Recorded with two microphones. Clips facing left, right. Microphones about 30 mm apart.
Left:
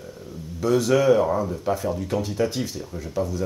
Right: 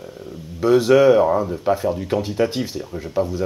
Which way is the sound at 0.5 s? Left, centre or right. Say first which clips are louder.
Right 6 dB; right.